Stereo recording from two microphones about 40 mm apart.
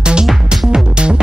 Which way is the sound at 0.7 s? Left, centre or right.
Right.